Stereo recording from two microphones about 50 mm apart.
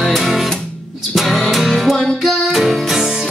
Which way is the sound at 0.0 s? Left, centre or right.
Centre.